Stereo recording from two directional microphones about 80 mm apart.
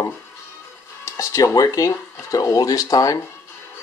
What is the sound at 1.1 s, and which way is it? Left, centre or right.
Speech, left.